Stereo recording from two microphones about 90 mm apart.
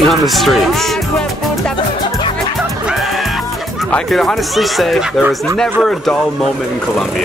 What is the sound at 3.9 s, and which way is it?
Speech, 5° left (ahead or behind).